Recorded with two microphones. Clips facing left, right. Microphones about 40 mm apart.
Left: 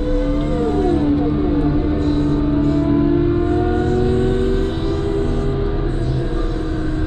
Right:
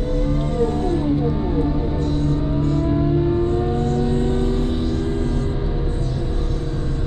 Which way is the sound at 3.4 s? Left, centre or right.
Left.